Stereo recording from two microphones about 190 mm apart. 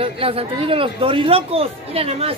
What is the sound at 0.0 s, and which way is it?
A woman's voice, 30° right (ahead or behind).